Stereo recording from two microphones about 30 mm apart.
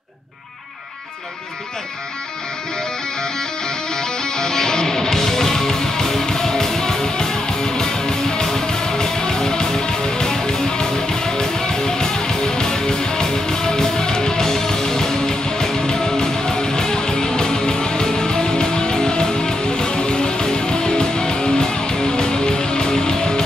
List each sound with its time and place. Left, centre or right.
3.9 s music: left